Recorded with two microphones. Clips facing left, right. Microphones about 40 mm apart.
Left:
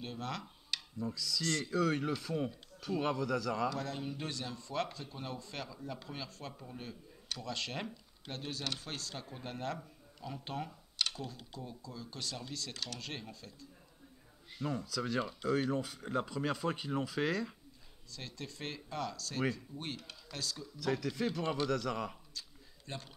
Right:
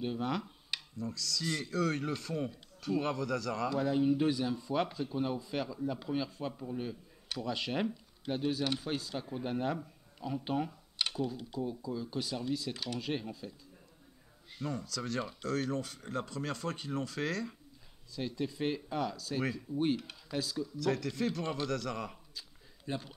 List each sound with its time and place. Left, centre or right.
0.0 s speech: centre
0.9 s speech: centre
1.4 s speech: centre
1.7 s speech: centre
3.7 s speech: centre
14.6 s speech: centre
18.1 s speech: centre
22.8 s speech: centre